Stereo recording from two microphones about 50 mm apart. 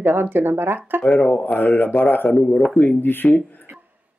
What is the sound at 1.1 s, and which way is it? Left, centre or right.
Speech, left.